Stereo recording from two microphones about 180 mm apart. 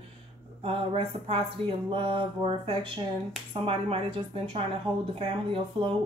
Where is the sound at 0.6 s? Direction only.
30° right (ahead or behind).